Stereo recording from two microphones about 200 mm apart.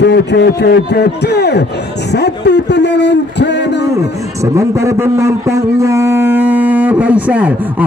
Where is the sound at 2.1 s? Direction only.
55° left (ahead or behind).